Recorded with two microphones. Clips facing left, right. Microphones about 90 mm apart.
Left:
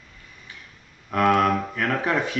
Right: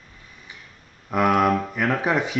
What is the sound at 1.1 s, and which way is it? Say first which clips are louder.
Speech: even; 15° right (ahead or behind).